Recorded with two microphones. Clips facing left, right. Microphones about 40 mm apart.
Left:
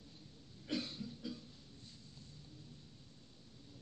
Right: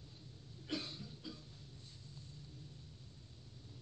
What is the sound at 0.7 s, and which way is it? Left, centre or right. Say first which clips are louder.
Throat clearing: left 2 dB; right.